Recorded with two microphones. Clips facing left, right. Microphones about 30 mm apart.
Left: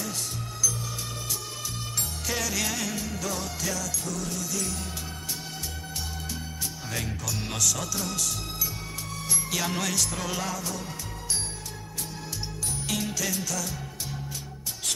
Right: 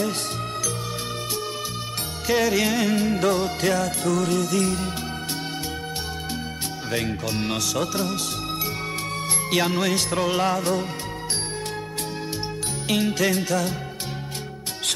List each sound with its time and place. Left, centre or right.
2.2 s music: right
6.9 s music: right
9.7 s music: right
9.9 s music: right
12.8 s music: right